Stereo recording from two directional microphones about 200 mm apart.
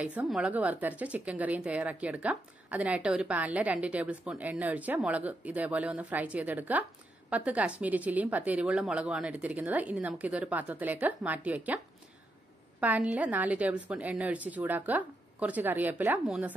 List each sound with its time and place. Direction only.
0.0 s speech: 5° right (ahead or behind)
12.8 s speech: 5° right (ahead or behind)